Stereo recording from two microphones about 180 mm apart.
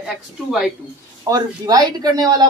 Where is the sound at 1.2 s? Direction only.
20° right (ahead or behind).